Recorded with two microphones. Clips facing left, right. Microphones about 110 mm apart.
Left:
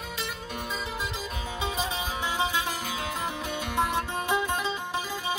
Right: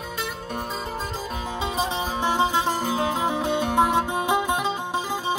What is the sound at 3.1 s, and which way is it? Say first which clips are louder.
Music: right 8 dB; 65° right (ahead or behind).